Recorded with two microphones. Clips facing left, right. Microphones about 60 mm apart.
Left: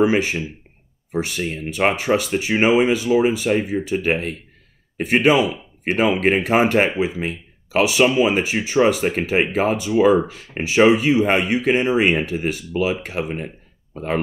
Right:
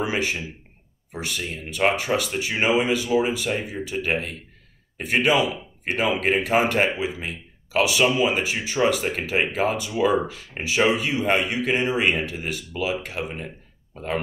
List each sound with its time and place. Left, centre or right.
0.0 s speech: left